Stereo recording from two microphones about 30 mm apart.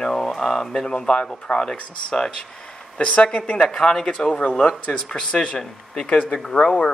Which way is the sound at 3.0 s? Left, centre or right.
Left.